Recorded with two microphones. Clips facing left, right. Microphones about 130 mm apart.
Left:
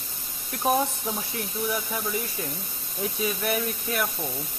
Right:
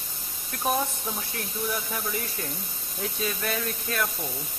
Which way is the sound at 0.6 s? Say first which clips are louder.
Left 3 dB; 20° left (ahead or behind).